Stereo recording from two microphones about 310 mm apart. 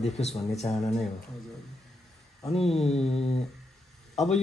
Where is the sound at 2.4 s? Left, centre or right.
Centre.